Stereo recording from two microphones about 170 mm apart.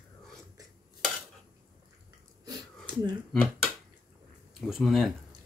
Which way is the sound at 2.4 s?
25° right (ahead or behind).